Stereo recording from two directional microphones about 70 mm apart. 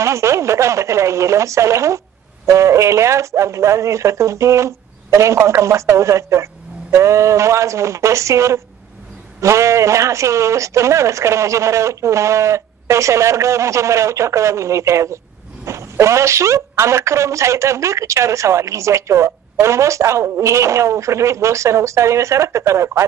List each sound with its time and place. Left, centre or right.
0.0 s speech: right